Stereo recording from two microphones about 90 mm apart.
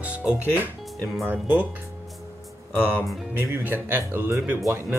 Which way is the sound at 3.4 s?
25° right (ahead or behind).